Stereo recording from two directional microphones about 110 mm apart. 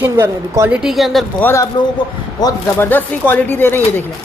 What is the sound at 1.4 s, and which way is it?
Speech, 25° left (ahead or behind).